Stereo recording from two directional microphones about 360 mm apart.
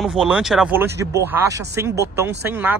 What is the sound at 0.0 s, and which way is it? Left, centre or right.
Speech, centre.